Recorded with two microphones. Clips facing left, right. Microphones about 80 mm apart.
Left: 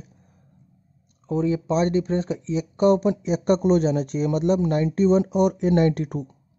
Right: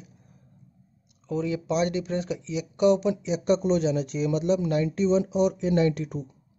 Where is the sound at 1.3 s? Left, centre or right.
Left.